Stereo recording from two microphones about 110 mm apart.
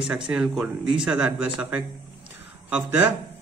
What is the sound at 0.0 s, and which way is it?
Speech, 5° right (ahead or behind).